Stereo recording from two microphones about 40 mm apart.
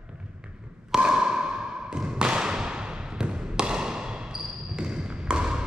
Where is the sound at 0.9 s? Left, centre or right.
Centre.